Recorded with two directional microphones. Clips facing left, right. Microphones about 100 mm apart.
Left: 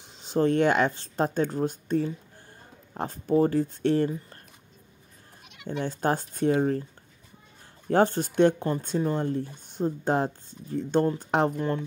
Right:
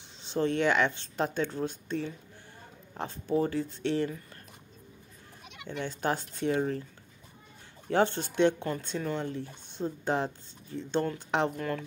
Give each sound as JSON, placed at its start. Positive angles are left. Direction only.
{"t": 0.2, "sound": "speech", "side_deg": 40}
{"t": 5.7, "sound": "speech", "side_deg": 40}
{"t": 7.9, "sound": "speech", "side_deg": 40}
{"t": 11.5, "sound": "speech", "side_deg": 30}